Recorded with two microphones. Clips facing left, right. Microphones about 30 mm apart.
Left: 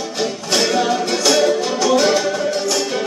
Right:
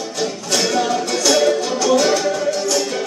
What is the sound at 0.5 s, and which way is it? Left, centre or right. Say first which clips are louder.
Music: left 1 dB; centre.